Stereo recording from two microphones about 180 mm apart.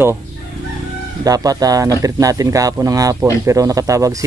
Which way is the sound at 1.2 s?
20° right (ahead or behind).